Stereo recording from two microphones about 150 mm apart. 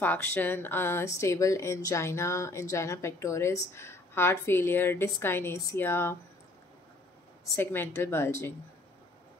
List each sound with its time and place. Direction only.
0.0 s speech: 15° left (ahead or behind)
7.5 s speech: 15° left (ahead or behind)